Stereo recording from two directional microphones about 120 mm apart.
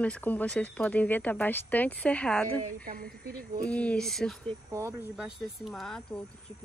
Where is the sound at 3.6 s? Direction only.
10° left (ahead or behind).